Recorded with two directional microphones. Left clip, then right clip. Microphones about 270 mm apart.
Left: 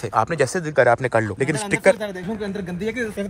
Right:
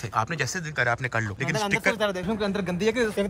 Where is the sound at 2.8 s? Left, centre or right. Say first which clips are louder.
Right 2 dB; right.